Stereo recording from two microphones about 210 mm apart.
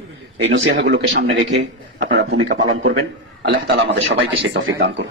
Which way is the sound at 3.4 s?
50° right (ahead or behind).